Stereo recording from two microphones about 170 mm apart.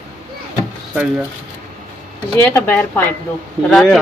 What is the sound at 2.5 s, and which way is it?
Speech, 10° left (ahead or behind).